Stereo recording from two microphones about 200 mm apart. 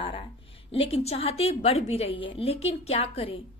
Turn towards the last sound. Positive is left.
turn(degrees=25)  # may be behind; listen again after turning